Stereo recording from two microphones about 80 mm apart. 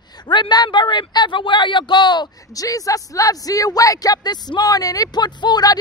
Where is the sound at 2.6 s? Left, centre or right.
Left.